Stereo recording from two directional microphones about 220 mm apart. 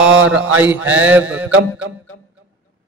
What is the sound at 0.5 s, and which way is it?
Mantra, 5° right (ahead or behind).